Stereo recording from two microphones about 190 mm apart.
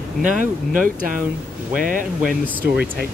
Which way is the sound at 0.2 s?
45° right (ahead or behind).